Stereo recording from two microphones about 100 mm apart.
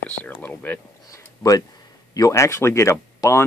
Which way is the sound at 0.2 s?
15° left (ahead or behind).